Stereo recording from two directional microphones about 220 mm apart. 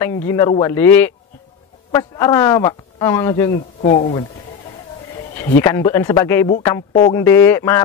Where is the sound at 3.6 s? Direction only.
25° left (ahead or behind).